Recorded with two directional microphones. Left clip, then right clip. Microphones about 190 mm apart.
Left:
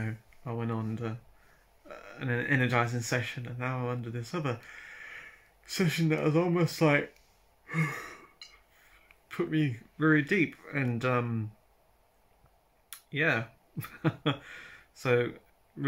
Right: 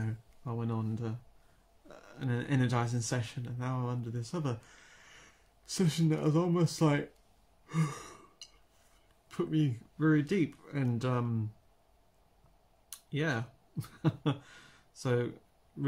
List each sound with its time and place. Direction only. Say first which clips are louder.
0.0 s speech: left 4 dB; 10° right (ahead or behind)
7.6 s sigh: left 5 dB; 10° right (ahead or behind)
9.3 s speech: left 2 dB; 10° right (ahead or behind)
12.9 s speech: left 6 dB; 10° right (ahead or behind)